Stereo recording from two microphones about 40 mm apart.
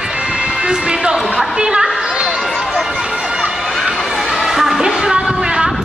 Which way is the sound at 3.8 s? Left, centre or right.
Centre.